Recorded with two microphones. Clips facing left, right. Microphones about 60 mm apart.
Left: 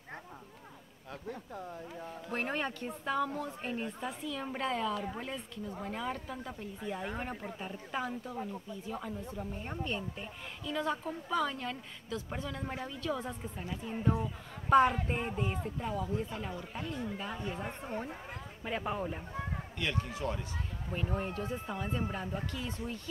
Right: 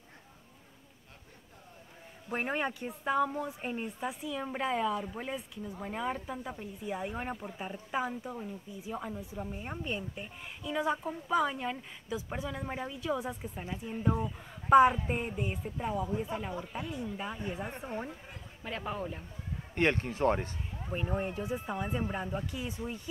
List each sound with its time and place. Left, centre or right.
2.3 s a woman's voice: centre
7.5 s a woman's voice: centre
17.8 s speech: centre
18.6 s speech: centre
19.7 s speech: right
20.9 s a woman's voice: centre